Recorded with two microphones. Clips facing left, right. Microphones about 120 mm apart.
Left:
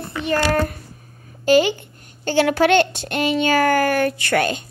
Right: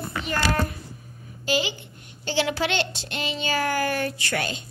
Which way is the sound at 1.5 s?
50° left (ahead or behind).